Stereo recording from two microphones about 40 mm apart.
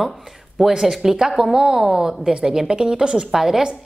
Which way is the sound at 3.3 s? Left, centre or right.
Centre.